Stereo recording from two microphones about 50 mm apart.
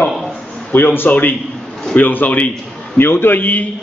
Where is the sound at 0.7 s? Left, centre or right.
Left.